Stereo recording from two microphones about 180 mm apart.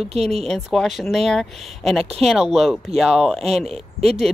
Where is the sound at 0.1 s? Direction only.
35° right (ahead or behind).